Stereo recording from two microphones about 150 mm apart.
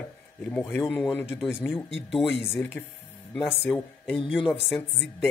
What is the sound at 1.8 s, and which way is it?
Speech, centre (ahead or behind).